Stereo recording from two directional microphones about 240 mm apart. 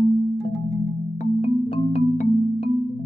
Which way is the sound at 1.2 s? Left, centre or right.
Left.